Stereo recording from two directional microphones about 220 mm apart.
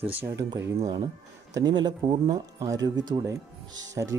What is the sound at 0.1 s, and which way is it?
Speech, 15° right (ahead or behind).